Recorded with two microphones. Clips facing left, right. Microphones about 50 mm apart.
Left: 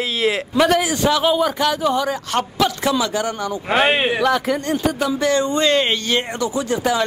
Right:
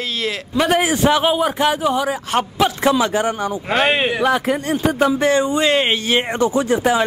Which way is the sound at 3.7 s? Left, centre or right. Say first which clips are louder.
Left 1 dB; centre.